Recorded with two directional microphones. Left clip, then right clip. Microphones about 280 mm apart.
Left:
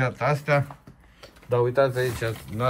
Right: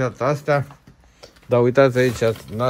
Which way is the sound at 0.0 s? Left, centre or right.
Centre.